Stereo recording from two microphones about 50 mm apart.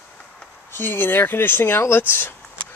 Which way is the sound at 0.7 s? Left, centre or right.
Left.